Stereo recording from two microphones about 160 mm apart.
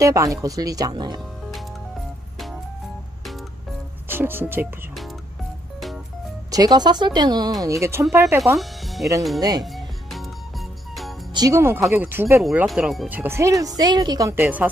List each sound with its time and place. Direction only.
0.0 s speech: 20° right (ahead or behind)
4.1 s speech: 15° right (ahead or behind)
6.5 s speech: 25° right (ahead or behind)
8.5 s music: centre (ahead or behind)
11.3 s speech: 20° right (ahead or behind); by 13.1 s centre (ahead or behind)
13.1 s speech: 15° right (ahead or behind)
14.4 s speech: 10° right (ahead or behind)